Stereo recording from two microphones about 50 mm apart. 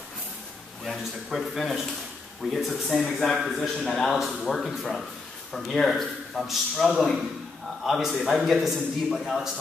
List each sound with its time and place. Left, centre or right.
0.8 s speech: centre